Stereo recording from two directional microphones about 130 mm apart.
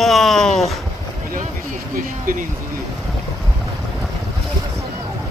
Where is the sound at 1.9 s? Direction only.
90° right.